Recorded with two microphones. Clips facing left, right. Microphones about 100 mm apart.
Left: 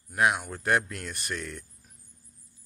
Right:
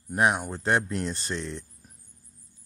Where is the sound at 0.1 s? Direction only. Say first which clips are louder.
Right 2 dB; 30° right (ahead or behind).